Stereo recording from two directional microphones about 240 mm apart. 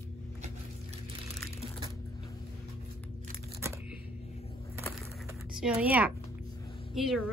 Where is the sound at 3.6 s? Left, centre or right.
Centre.